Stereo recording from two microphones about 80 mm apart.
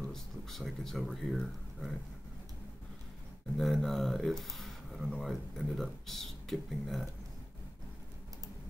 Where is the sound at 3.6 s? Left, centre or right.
Centre.